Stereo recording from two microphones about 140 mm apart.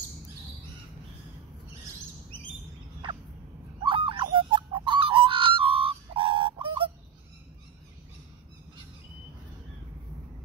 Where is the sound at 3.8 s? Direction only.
40° right (ahead or behind).